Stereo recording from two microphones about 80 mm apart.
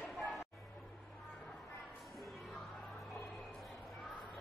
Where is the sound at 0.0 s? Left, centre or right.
Centre.